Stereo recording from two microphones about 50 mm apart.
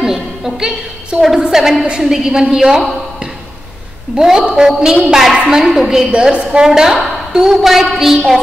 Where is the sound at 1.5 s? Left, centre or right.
Centre.